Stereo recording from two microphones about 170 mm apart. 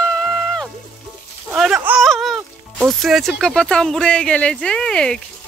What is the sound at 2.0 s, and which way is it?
Speech, centre (ahead or behind).